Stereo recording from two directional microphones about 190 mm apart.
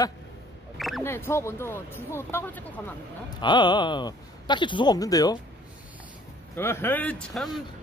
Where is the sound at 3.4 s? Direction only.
25° left (ahead or behind).